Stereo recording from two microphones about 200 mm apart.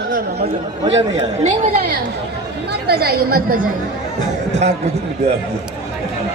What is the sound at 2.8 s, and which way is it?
Speech, 50° right (ahead or behind).